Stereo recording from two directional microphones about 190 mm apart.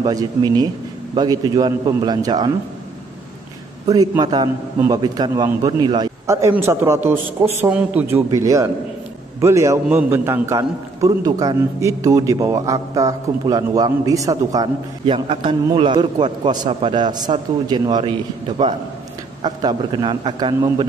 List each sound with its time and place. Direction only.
0.0 s a man's voice: 20° right (ahead or behind)
3.9 s a man's voice: 20° right (ahead or behind)
19.4 s a man's voice: 25° right (ahead or behind)